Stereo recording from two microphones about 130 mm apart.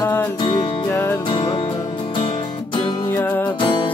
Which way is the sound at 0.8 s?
15° left (ahead or behind).